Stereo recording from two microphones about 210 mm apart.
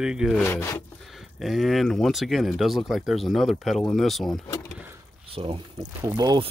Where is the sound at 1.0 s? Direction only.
Centre (ahead or behind).